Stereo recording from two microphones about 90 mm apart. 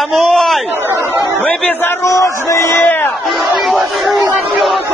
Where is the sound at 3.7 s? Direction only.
Centre (ahead or behind).